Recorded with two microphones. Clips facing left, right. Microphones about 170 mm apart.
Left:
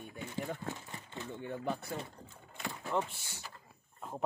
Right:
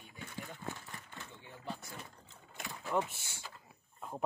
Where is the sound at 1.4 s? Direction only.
55° left (ahead or behind).